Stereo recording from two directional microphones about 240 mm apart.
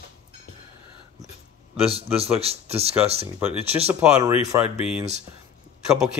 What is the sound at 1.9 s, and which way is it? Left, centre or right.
Speech, right.